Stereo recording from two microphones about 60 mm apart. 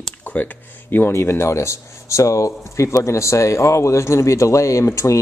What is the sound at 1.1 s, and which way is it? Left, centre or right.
Speech, left.